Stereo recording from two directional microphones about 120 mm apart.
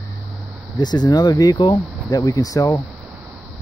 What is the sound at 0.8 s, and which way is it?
Speech, 35° left (ahead or behind).